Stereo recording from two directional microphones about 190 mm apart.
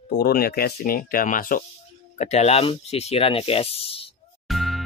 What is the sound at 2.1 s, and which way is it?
Speech, 35° left (ahead or behind).